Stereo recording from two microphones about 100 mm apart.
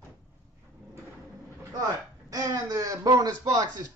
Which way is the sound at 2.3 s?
35° right (ahead or behind).